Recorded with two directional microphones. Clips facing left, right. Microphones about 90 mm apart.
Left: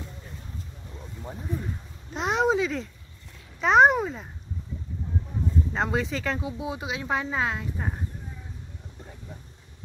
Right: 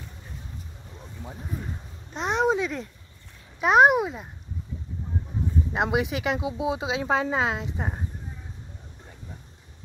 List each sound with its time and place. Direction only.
2.1 s speech: centre (ahead or behind)
5.7 s speech: 15° right (ahead or behind)